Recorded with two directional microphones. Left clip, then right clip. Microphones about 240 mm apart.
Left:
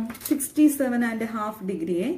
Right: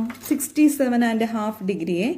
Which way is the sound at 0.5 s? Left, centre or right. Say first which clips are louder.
Right 2 dB; right.